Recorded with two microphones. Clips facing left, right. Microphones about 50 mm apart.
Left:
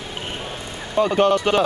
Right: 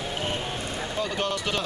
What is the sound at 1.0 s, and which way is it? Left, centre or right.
Speech, left.